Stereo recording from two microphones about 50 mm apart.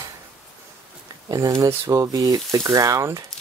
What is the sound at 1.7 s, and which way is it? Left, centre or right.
Speech, right.